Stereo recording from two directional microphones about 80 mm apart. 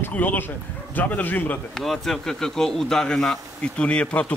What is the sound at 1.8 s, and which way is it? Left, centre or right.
Speech, centre.